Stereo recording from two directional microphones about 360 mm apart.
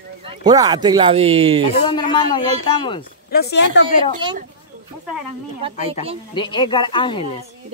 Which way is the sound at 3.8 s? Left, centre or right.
Centre.